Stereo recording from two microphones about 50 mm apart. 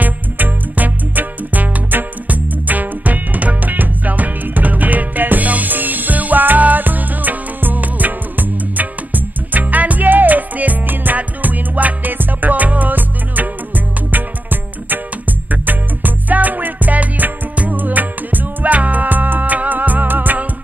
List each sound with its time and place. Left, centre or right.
0.0 s music: right